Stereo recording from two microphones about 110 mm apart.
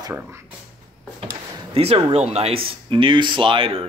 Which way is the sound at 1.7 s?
60° right (ahead or behind).